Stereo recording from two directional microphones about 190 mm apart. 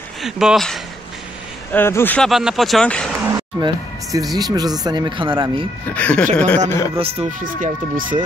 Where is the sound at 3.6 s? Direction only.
20° right (ahead or behind).